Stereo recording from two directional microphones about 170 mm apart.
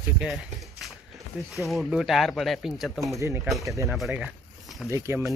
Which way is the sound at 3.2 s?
15° right (ahead or behind).